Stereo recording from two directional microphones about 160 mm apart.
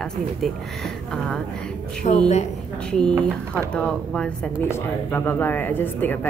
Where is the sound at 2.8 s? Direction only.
5° left (ahead or behind).